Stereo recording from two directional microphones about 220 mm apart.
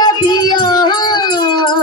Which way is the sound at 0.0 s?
20° left (ahead or behind).